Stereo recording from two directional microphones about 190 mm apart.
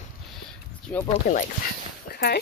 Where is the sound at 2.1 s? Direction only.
55° left (ahead or behind).